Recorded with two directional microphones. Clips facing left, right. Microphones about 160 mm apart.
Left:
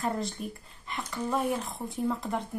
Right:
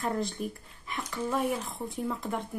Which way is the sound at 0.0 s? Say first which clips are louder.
Right 1 dB; centre (ahead or behind).